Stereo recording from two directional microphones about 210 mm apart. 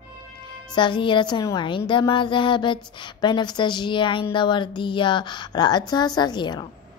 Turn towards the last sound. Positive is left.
turn(degrees=20)  # may be behind; listen again after turning